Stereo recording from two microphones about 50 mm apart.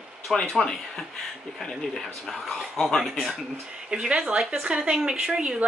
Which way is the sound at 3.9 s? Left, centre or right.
Right.